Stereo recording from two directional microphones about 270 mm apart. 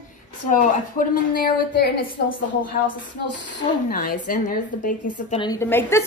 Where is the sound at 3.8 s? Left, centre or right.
Left; by 6.0 s centre.